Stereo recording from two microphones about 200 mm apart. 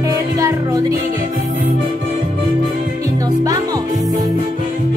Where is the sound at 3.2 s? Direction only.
20° right (ahead or behind).